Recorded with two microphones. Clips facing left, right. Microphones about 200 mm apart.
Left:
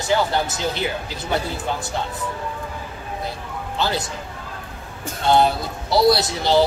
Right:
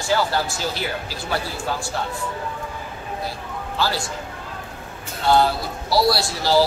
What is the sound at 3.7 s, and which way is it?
Speech, 20° left (ahead or behind).